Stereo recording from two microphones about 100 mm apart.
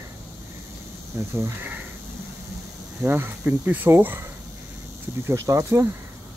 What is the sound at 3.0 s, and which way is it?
Speech, 20° right (ahead or behind).